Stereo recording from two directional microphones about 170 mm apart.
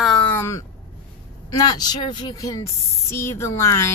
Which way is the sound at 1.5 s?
25° left (ahead or behind).